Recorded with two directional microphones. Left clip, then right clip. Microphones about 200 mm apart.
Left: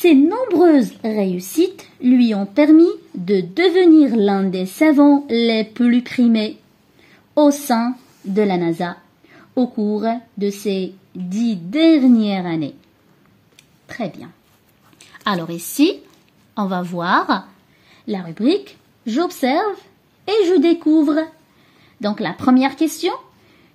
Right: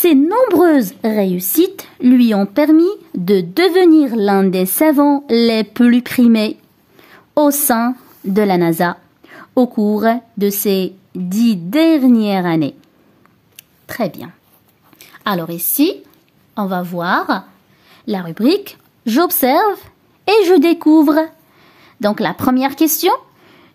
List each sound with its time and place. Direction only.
0.0 s a woman's voice: 40° right (ahead or behind)
13.6 s a sound: 40° right (ahead or behind)
15.0 s a woman's voice: 20° right (ahead or behind)
17.9 s a woman's voice: 30° right (ahead or behind)